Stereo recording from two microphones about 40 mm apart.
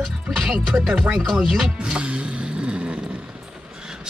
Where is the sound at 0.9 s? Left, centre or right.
Right.